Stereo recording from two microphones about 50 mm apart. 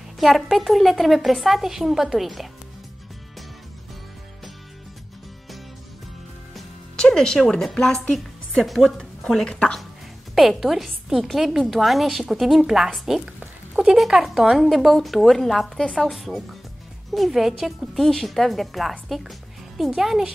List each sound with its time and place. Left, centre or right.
0.2 s a woman's voice: centre
7.0 s music: centre
7.5 s a woman's voice: centre
10.3 s a woman's voice: centre